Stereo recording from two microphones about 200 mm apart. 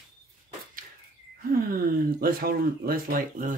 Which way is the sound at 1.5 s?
45° right (ahead or behind).